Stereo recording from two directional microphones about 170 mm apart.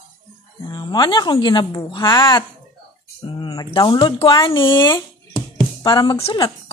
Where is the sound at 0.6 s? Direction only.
25° left (ahead or behind).